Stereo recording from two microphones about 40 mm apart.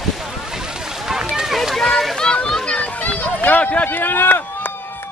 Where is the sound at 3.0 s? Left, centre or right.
Left.